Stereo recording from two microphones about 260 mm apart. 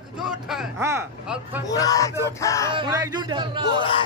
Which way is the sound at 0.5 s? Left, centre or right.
Centre.